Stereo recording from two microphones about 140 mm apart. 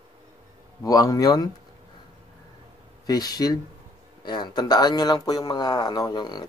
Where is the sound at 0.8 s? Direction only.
25° left (ahead or behind).